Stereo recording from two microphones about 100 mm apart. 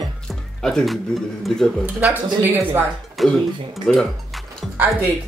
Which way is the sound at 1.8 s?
15° right (ahead or behind).